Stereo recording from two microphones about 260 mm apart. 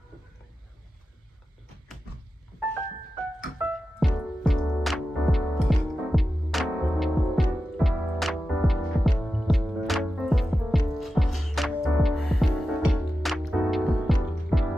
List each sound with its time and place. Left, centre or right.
3.6 s music: centre